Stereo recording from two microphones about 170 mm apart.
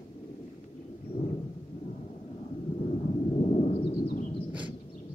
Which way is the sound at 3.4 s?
40° left (ahead or behind).